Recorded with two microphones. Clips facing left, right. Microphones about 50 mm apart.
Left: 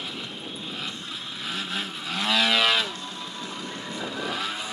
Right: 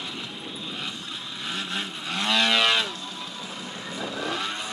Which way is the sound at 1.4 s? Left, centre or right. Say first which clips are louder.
Even; centre.